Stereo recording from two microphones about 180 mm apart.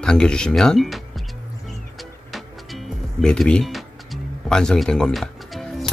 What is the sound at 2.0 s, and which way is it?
Music, centre (ahead or behind).